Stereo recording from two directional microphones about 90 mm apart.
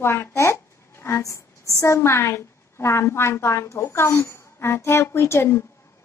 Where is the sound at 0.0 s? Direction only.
30° left (ahead or behind).